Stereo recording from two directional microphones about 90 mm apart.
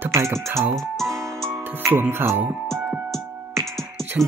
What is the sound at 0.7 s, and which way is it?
Music, 5° left (ahead or behind).